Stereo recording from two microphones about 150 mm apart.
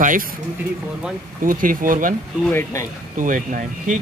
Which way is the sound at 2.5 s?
20° left (ahead or behind).